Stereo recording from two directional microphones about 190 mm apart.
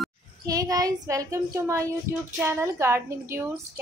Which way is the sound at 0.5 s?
20° right (ahead or behind).